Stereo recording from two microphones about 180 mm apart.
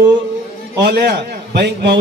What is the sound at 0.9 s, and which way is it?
A man's voice, 65° right (ahead or behind).